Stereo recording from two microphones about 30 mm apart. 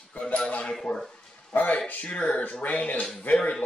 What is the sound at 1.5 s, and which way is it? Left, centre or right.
Speech, left.